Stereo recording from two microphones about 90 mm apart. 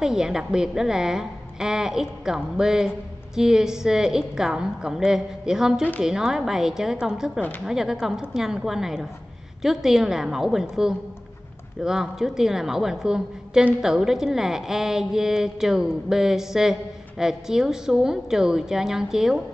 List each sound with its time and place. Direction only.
0.0 s a woman's voice: 5° right (ahead or behind)